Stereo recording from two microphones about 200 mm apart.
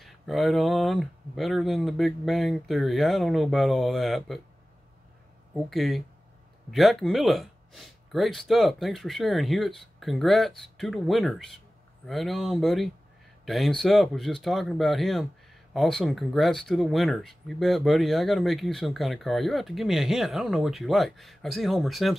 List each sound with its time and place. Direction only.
0.0 s speech: centre (ahead or behind)
5.5 s speech: centre (ahead or behind)